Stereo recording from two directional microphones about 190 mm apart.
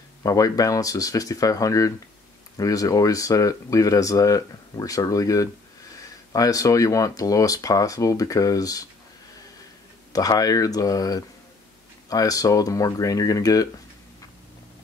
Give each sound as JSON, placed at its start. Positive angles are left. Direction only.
{"t": 0.2, "sound": "speech", "side_deg": 20}
{"t": 10.1, "sound": "speech", "side_deg": 20}